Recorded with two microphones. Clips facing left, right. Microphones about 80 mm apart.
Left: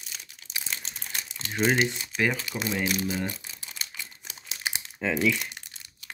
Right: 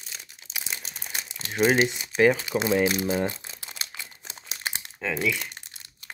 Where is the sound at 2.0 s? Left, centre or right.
Right.